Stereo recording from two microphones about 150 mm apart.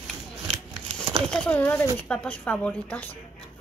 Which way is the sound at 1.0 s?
30° right (ahead or behind).